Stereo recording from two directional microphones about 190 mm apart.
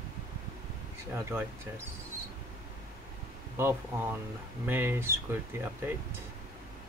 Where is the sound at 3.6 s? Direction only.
10° right (ahead or behind).